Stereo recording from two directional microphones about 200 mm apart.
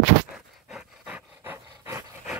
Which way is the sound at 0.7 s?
5° right (ahead or behind).